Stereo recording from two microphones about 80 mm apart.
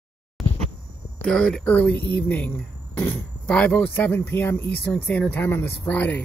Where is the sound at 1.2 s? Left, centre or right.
Centre.